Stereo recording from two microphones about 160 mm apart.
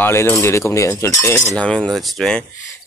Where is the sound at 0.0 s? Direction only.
15° left (ahead or behind).